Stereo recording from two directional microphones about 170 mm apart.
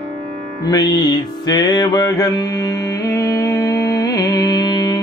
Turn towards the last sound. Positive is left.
turn(degrees=25)  # may be behind; listen again after turning